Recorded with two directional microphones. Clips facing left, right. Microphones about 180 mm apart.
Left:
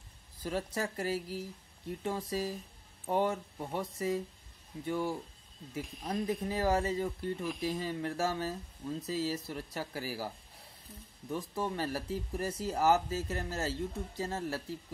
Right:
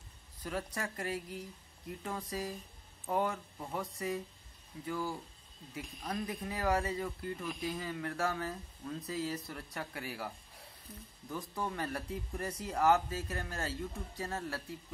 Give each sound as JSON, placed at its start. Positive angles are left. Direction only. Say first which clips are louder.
{"t": 0.4, "sound": "speech", "louder": "left 4 dB", "side_deg": 30}